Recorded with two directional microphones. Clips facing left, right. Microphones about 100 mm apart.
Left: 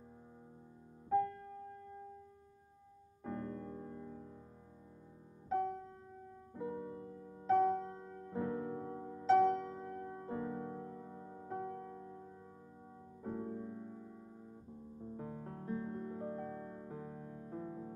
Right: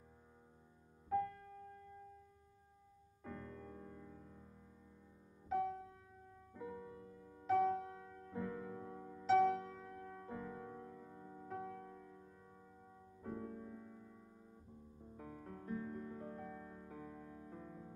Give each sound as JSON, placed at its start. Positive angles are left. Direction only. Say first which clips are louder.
{"t": 1.0, "sound": "music", "louder": "left 5 dB", "side_deg": 30}
{"t": 3.3, "sound": "music", "louder": "left 8 dB", "side_deg": 25}
{"t": 6.5, "sound": "music", "louder": "left 7 dB", "side_deg": 30}
{"t": 16.9, "sound": "music", "louder": "left 4 dB", "side_deg": 30}